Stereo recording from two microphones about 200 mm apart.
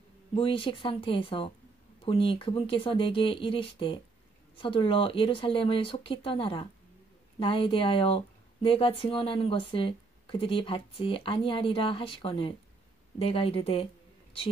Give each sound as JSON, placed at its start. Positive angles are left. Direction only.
{"t": 0.3, "sound": "speech", "side_deg": 25}